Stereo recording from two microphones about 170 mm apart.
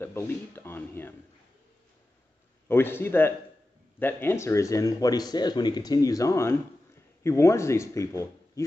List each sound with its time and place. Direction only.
0.0 s speech: 15° left (ahead or behind)
2.7 s speech: 15° left (ahead or behind)